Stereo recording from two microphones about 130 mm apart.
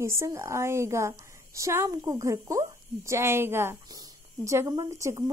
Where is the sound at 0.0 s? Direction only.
20° right (ahead or behind).